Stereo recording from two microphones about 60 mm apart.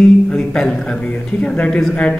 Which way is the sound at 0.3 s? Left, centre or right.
Centre.